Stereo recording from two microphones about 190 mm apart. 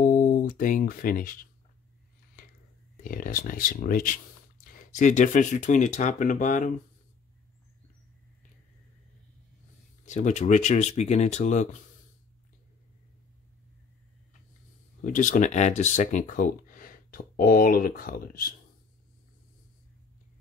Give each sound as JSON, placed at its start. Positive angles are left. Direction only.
{"t": 0.0, "sound": "speech", "side_deg": 45}
{"t": 3.0, "sound": "speech", "side_deg": 50}
{"t": 10.0, "sound": "speech", "side_deg": 40}
{"t": 15.0, "sound": "speech", "side_deg": 45}